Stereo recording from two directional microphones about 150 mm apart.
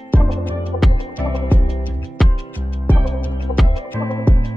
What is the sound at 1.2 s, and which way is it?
Music, 30° left (ahead or behind).